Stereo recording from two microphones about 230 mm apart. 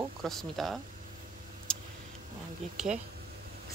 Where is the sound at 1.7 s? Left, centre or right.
Centre.